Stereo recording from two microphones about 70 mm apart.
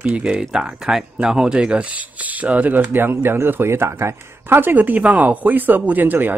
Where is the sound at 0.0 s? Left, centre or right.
Centre.